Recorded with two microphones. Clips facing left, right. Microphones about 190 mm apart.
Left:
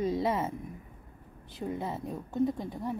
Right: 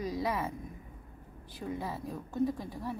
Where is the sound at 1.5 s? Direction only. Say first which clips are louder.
Left 3 dB; 20° left (ahead or behind).